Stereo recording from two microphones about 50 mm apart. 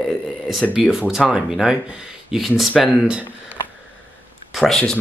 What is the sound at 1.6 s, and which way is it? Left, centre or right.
Speech, centre.